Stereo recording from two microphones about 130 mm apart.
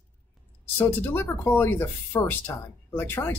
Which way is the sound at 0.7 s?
20° left (ahead or behind).